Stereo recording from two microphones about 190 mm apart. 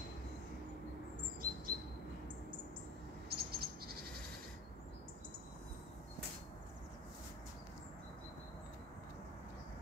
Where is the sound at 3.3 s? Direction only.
55° right (ahead or behind).